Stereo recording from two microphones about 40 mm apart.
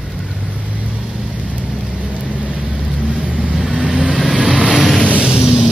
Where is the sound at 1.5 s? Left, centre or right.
Right.